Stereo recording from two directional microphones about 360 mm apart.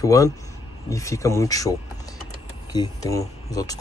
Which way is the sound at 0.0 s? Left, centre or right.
Centre.